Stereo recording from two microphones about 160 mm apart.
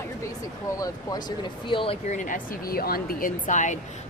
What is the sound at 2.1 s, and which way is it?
Speech, 55° left (ahead or behind).